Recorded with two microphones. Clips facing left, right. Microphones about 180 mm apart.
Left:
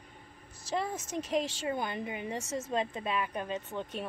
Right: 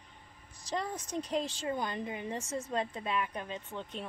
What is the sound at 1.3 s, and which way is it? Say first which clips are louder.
Speech: left 3 dB; 10° left (ahead or behind).